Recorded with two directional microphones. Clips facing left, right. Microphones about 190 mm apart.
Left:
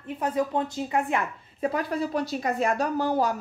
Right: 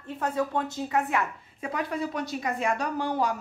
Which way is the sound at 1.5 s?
35° left (ahead or behind).